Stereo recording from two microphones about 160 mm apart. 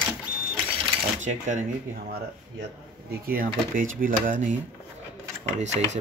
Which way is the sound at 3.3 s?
60° right (ahead or behind).